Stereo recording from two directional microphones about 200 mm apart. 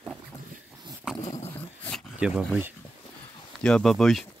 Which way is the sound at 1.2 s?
35° left (ahead or behind).